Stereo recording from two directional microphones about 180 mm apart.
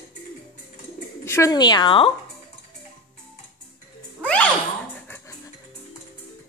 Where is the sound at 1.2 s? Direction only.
15° left (ahead or behind).